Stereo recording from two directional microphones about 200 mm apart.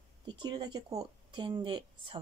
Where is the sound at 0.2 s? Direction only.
20° right (ahead or behind).